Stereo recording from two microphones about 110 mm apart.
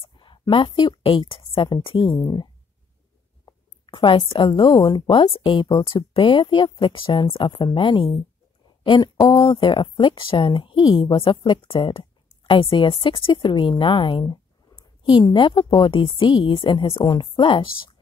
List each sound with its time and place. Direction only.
0.0 s a woman's voice: 50° left (ahead or behind)
9.1 s speech: 35° left (ahead or behind)
14.8 s a sound: 50° left (ahead or behind)
15.3 s speech: 45° left (ahead or behind)
17.0 s speech: 40° left (ahead or behind)